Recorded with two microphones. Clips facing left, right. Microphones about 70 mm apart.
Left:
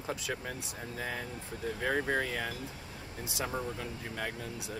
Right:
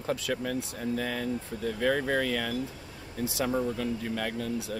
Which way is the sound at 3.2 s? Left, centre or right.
Left.